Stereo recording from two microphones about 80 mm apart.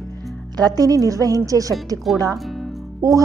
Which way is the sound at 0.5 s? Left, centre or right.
Right.